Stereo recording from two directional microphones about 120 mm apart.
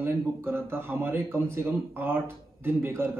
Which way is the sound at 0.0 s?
20° right (ahead or behind).